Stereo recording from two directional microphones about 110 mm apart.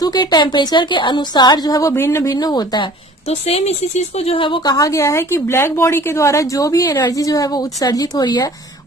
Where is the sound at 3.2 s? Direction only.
70° left (ahead or behind); by 4.7 s 50° left (ahead or behind).